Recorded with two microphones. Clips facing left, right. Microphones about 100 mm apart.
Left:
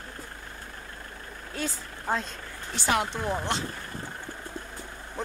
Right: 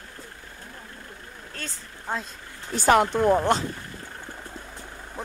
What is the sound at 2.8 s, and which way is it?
Speech, 50° right (ahead or behind).